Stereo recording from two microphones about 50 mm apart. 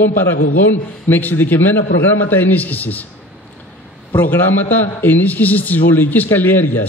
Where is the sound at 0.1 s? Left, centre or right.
Left.